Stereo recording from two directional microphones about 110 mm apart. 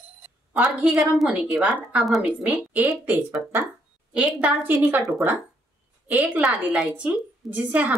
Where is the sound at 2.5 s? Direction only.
15° right (ahead or behind).